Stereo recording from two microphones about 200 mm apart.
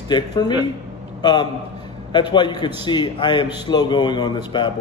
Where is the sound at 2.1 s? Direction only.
20° left (ahead or behind).